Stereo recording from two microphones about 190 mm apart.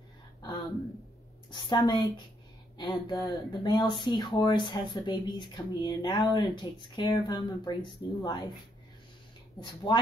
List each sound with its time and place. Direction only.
1.5 s speech: 25° left (ahead or behind)